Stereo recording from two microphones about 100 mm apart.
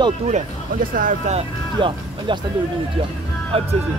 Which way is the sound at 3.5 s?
75° right (ahead or behind).